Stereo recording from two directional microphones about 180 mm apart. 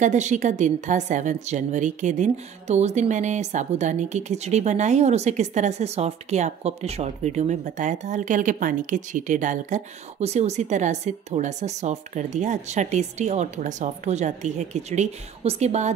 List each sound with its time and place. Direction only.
0.0 s a woman's voice: 40° right (ahead or behind)